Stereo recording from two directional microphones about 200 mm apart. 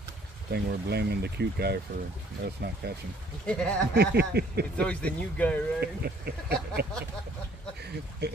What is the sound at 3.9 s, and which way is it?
Speech, 55° right (ahead or behind).